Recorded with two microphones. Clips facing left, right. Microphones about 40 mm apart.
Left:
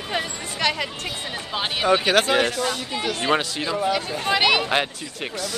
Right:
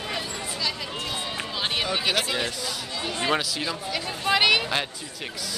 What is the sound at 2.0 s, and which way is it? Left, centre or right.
Speech, left.